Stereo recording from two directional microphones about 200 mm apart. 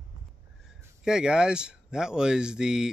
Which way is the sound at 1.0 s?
5° right (ahead or behind).